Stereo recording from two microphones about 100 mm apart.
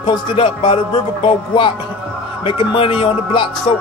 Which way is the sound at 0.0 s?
55° left (ahead or behind).